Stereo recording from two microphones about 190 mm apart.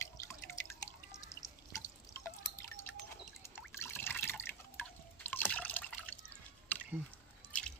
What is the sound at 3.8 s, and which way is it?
Drip, 10° left (ahead or behind).